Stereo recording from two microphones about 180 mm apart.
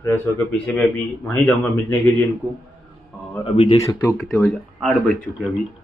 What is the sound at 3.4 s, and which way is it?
Speech, 30° left (ahead or behind).